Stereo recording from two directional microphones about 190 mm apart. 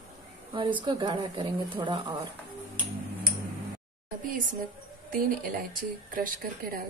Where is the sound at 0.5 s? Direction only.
25° right (ahead or behind).